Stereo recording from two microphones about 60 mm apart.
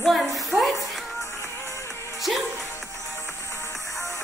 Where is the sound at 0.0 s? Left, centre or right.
Centre.